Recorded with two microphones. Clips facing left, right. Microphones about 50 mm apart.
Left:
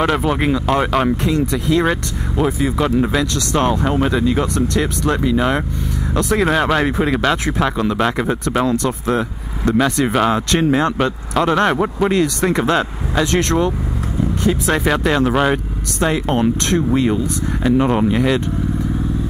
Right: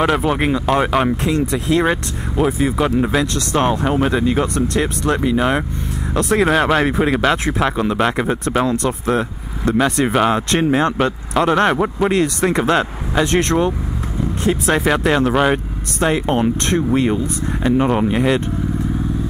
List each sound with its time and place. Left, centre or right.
0.0 s speech: centre
4.1 s speech: centre
17.6 s speech: centre
18.0 s speech: centre